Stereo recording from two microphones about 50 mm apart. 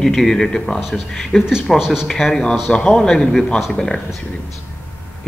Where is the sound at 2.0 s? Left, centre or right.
Centre.